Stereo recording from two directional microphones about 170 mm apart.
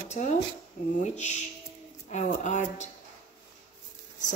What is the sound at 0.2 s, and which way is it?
Speech, 45° left (ahead or behind).